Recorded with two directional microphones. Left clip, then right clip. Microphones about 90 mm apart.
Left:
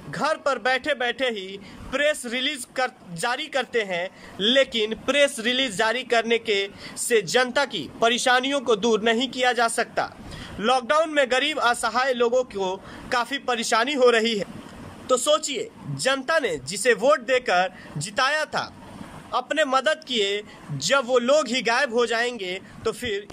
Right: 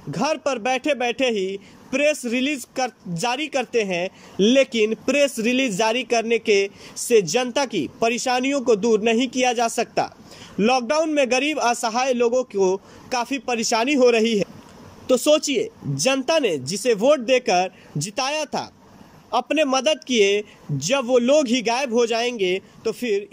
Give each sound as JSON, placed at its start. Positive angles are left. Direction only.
{"t": 0.1, "sound": "a man's voice", "side_deg": -20}